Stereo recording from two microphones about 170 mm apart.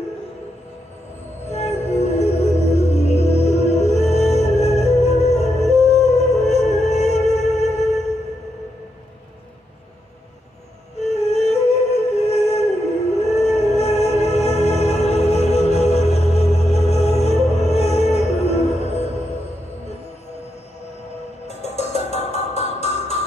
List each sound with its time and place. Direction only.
1.5 s music: 40° left (ahead or behind)
11.0 s music: 40° left (ahead or behind)
21.5 s music: 40° left (ahead or behind)